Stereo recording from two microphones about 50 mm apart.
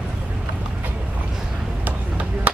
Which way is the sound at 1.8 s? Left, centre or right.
Right.